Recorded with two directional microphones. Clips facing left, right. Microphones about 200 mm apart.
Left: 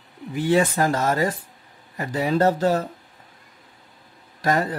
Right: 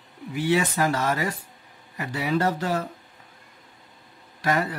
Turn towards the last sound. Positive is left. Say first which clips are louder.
# left 3 dB
turn(degrees=45)  # may be behind; listen again after turning